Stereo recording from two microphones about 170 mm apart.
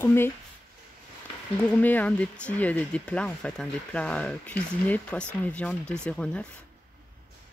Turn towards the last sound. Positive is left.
turn(degrees=5)  # may be behind; listen again after turning